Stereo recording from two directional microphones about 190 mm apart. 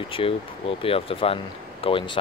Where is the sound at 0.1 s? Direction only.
30° left (ahead or behind).